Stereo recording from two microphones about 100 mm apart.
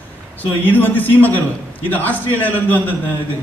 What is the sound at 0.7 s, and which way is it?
A man's voice, 20° left (ahead or behind).